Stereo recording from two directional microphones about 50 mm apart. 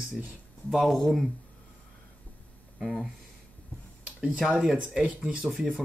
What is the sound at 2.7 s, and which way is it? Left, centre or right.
Speech, centre.